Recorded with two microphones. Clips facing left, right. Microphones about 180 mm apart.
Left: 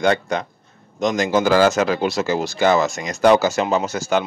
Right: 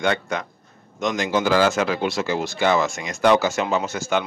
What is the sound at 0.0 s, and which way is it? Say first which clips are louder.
Speech: left 4 dB; 35° left (ahead or behind).